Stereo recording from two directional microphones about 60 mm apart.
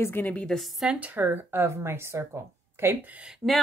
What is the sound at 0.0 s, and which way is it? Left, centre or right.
Speech, left.